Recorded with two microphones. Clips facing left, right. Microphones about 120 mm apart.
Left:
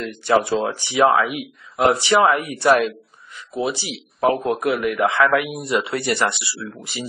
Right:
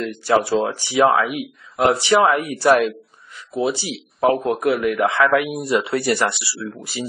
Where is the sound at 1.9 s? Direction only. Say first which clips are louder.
Even; 20° right (ahead or behind); by 2.9 s 5° right (ahead or behind).